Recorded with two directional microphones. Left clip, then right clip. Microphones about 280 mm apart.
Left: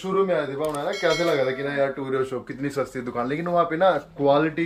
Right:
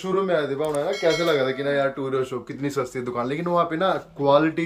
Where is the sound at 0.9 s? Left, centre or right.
Centre.